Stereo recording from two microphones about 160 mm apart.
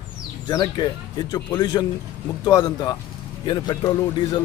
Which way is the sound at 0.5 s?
25° left (ahead or behind).